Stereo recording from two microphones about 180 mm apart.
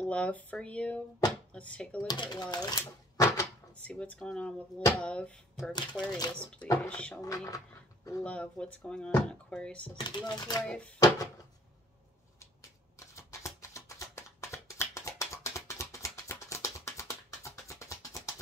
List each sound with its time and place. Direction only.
0.0 s speech: 5° left (ahead or behind)
2.0 s speech: 25° left (ahead or behind); by 5.7 s 5° left (ahead or behind)
5.8 s speech: 25° left (ahead or behind)
6.3 s speech: 5° left (ahead or behind)
7.2 s speech: 20° left (ahead or behind)
8.2 s speech: 5° left (ahead or behind)
9.9 s speech: 25° left (ahead or behind)
10.6 s speech: 5° left (ahead or behind)
13.1 s a sound: 15° left (ahead or behind)